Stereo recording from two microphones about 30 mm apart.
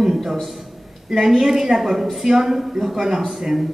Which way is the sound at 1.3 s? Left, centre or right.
Centre.